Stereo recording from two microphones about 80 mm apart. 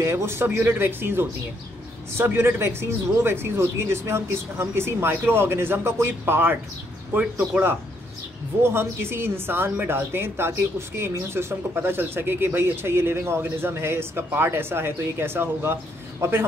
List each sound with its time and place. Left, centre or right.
0.0 s a woman's voice: right
8.6 s a woman's voice: right